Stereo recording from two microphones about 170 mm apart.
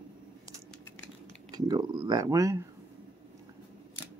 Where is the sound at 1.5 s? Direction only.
25° right (ahead or behind).